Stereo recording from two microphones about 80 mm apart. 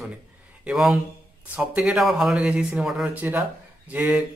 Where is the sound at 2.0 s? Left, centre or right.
Centre.